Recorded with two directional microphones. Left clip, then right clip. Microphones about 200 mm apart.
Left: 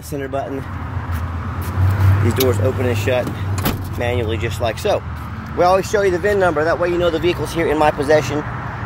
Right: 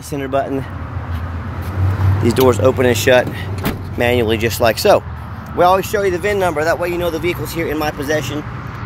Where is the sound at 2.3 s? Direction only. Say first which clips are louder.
Right 6 dB; 40° right (ahead or behind).